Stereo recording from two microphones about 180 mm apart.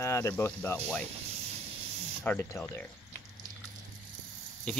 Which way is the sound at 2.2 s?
10° left (ahead or behind).